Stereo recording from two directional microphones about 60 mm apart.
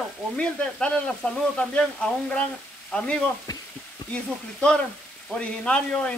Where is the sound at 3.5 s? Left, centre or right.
Left.